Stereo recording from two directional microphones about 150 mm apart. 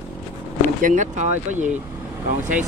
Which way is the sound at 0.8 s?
60° right (ahead or behind).